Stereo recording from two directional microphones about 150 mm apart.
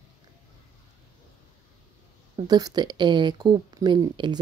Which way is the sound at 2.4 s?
25° right (ahead or behind).